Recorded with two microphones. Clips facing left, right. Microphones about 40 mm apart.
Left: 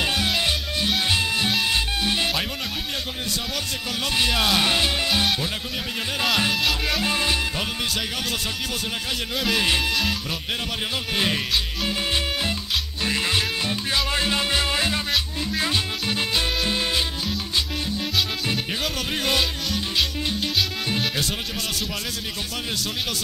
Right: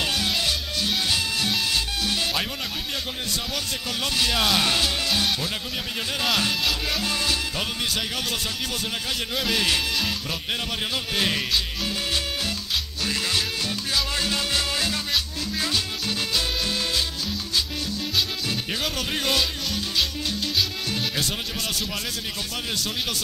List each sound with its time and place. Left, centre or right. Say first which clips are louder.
0.0 s music: left 2 dB; centre
4.3 s music: even; centre
4.6 s music: left 2 dB; centre
6.5 s music: left 2 dB; centre
7.0 s music: left 3 dB; left
9.4 s music: left 2 dB; centre
11.1 s music: left 1 dB; centre
11.8 s music: left 2 dB; left
19.2 s music: left 2 dB; centre